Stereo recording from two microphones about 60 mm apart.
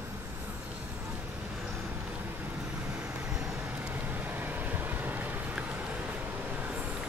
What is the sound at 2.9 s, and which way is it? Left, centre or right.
Vehicle, centre.